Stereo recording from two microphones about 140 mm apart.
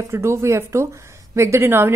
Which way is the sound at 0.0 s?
20° right (ahead or behind).